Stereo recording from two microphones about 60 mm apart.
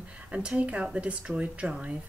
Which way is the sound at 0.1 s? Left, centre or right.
Centre.